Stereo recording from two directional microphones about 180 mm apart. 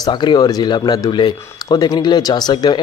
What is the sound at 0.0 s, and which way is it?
Speech, 25° left (ahead or behind).